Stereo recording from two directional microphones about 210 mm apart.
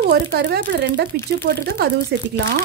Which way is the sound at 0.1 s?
50° right (ahead or behind).